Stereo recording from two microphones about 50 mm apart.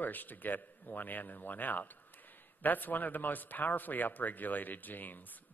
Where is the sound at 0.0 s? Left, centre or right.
Left.